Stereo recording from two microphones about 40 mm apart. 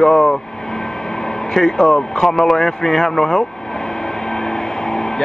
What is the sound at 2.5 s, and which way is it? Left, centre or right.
Vehicle, centre.